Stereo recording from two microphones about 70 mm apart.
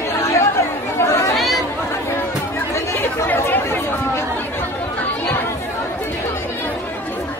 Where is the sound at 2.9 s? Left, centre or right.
Left.